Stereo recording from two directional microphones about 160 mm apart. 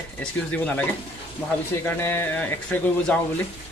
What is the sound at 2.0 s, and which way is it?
Speech, 15° left (ahead or behind).